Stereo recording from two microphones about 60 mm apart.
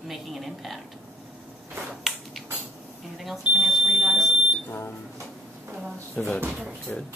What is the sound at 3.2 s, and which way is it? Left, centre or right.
Smoke detector, centre.